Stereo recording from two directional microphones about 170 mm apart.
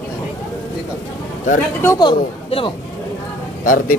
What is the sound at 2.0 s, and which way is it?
Speech, 30° left (ahead or behind).